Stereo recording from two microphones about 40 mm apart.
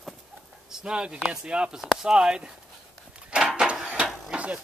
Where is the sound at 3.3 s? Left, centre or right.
Right.